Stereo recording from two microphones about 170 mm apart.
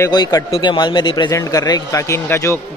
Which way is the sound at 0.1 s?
20° left (ahead or behind).